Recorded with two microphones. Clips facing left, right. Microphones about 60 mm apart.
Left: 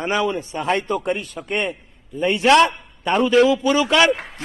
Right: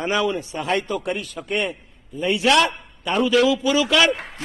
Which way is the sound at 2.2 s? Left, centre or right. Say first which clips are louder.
Left 3 dB; left.